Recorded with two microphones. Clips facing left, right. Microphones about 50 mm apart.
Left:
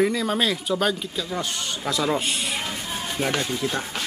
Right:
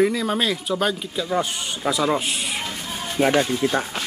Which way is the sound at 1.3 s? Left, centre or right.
Centre.